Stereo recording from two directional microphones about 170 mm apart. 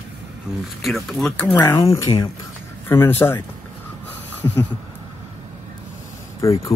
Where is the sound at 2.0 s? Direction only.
20° left (ahead or behind).